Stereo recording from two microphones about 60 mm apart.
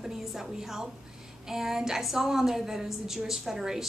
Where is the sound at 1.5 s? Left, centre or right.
Centre.